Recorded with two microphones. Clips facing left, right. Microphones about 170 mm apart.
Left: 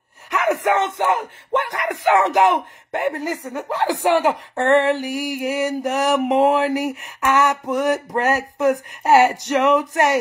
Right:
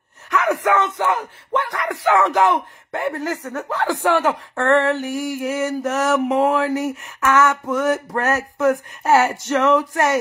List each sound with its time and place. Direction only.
0.3 s speech: 20° left (ahead or behind)